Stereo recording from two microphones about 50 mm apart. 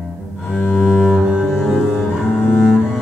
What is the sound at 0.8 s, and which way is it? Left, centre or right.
Cello, centre.